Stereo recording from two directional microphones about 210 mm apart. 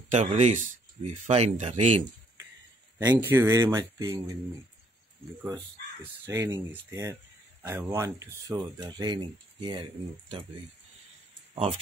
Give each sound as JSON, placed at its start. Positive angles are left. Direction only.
{"t": 0.1, "sound": "speech", "side_deg": -35}
{"t": 3.0, "sound": "speech", "side_deg": -10}
{"t": 6.2, "sound": "speech", "side_deg": -10}